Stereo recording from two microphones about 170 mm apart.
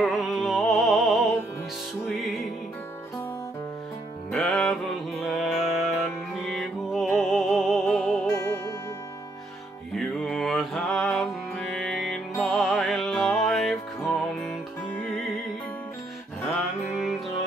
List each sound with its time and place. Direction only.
0.0 s music: centre (ahead or behind)
4.3 s music: 5° left (ahead or behind)
8.3 s music: 15° left (ahead or behind)
9.9 s music: 5° left (ahead or behind)